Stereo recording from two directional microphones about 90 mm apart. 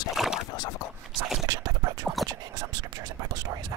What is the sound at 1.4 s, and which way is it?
Scratch, 40° right (ahead or behind).